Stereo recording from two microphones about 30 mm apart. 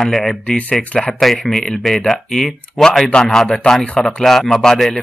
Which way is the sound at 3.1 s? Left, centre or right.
Left.